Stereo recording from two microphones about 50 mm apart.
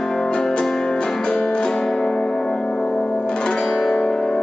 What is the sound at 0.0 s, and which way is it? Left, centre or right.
Music, centre.